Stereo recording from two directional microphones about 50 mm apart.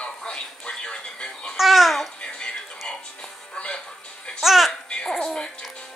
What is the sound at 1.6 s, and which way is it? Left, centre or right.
Babbling, centre.